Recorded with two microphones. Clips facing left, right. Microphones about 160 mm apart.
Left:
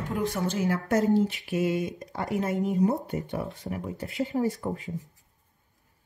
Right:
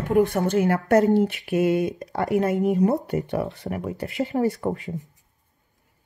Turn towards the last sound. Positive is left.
turn(degrees=-70)  # may be behind; listen again after turning